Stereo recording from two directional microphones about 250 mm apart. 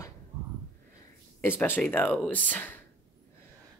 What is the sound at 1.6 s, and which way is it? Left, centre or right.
Speech, centre.